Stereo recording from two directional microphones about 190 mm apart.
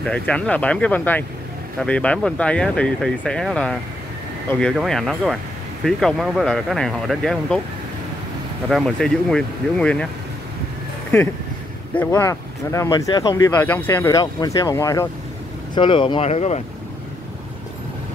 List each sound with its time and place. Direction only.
0.0 s speech: 5° left (ahead or behind)
8.6 s speech: centre (ahead or behind)
11.9 s speech: 10° left (ahead or behind); by 16.6 s 35° left (ahead or behind)